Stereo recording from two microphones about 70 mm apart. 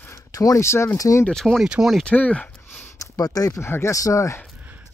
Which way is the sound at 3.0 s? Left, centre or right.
Left.